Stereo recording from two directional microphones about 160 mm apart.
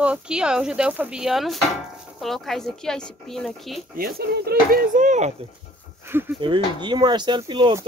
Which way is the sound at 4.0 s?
70° right (ahead or behind).